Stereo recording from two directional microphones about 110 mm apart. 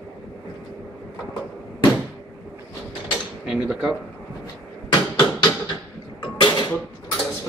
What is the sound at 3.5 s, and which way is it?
Speech, 10° right (ahead or behind).